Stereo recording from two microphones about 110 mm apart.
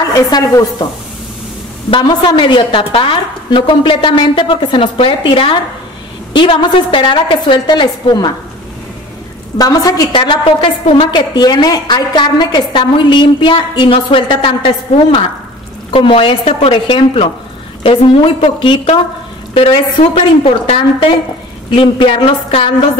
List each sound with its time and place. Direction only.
0.1 s speech: 30° left (ahead or behind)
1.9 s a woman's voice: 45° left (ahead or behind)
9.6 s speech: 35° left (ahead or behind)
10.1 s a woman's voice: 50° left (ahead or behind)